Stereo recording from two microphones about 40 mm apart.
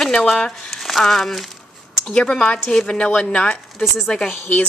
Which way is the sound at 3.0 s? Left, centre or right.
Left.